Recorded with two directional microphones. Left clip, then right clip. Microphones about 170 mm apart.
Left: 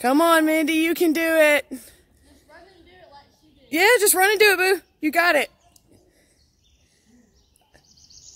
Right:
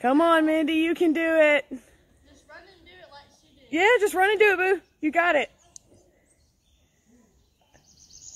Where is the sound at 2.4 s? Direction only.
30° right (ahead or behind).